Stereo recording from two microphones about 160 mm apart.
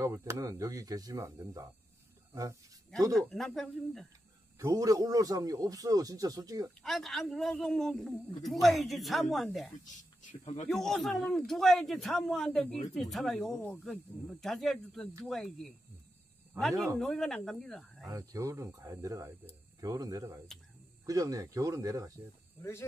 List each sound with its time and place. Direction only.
0.0 s a man's voice: 20° right (ahead or behind)
3.2 s a man's voice: 5° left (ahead or behind)
4.6 s a man's voice: 20° right (ahead or behind)
6.8 s a man's voice: centre (ahead or behind)
10.2 s speech: 45° left (ahead or behind)
10.7 s a man's voice: centre (ahead or behind)
18.0 s a man's voice: 20° right (ahead or behind)
22.6 s speech: 15° left (ahead or behind)